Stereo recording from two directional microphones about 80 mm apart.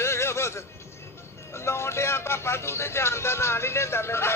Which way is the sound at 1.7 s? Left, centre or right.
Left.